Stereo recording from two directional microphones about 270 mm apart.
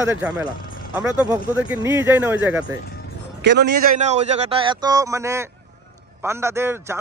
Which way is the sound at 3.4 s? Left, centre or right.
Right.